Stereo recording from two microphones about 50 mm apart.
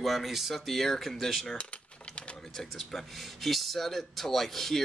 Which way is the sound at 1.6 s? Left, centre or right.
Left.